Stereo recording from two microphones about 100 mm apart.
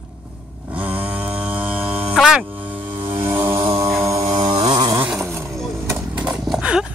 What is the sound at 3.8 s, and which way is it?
Music, 30° right (ahead or behind).